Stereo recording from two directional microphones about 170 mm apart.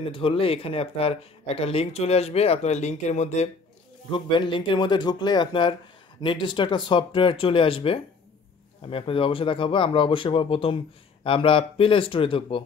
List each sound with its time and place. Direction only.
0.1 s speech: 30° left (ahead or behind)
4.1 s speech: 30° left (ahead or behind)